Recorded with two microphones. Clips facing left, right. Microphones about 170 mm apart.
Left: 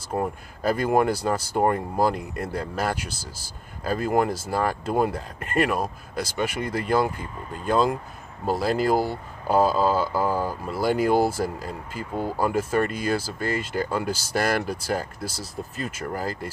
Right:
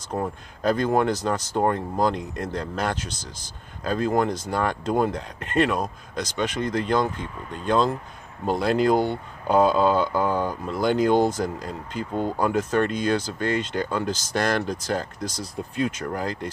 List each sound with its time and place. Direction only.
0.1 s speech: 5° left (ahead or behind)